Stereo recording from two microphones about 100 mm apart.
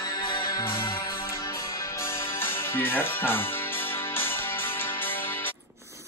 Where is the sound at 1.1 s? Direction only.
30° left (ahead or behind).